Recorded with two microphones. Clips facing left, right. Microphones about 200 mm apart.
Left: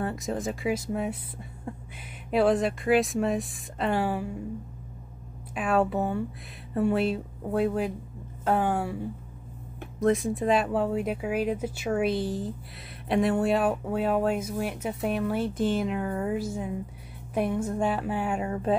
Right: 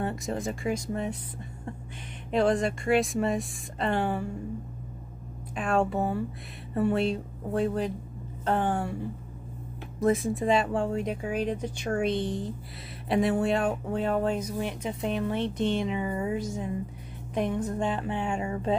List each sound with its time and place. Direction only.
0.0 s speech: centre (ahead or behind)
2.3 s speech: 5° left (ahead or behind)
5.5 s speech: 5° left (ahead or behind)
9.9 s speech: centre (ahead or behind)
16.4 s speech: 5° left (ahead or behind)